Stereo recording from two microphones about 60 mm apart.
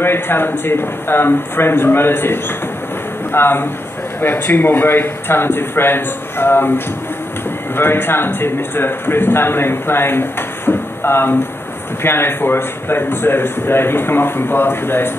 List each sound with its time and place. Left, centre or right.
0.0 s a man's voice: left
7.7 s a man's voice: left